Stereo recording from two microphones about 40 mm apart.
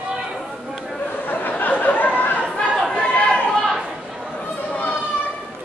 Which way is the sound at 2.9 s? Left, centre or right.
Centre.